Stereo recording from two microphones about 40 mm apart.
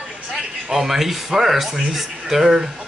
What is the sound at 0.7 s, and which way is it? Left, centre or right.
Speech, centre.